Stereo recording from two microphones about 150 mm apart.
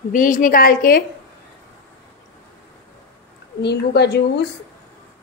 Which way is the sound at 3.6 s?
90° left.